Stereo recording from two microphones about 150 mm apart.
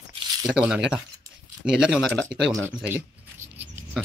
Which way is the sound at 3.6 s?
10° right (ahead or behind).